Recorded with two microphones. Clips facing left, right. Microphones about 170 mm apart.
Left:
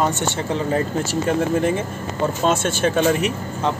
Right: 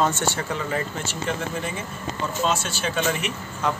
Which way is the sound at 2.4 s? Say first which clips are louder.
Left 5 dB; 50° left (ahead or behind).